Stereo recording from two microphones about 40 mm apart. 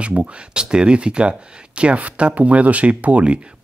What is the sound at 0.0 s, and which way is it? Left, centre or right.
Speech, right.